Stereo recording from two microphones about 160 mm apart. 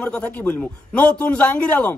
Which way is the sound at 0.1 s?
10° left (ahead or behind).